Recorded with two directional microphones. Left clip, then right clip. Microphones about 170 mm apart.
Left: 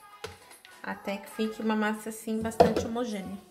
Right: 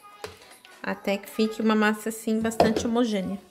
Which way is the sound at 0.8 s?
60° right (ahead or behind).